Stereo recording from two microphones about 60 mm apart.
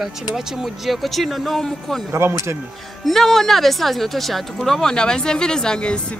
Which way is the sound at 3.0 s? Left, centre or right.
Centre.